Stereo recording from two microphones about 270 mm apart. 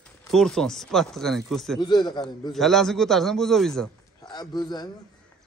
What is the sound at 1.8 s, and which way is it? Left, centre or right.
Speech, centre.